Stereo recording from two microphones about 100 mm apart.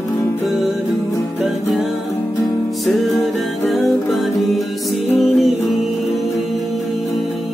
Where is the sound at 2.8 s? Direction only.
Centre (ahead or behind).